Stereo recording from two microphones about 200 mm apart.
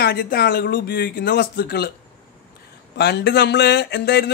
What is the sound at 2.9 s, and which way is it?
Speech, 55° left (ahead or behind).